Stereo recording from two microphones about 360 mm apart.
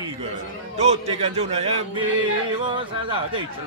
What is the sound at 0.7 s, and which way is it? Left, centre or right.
Speech, centre.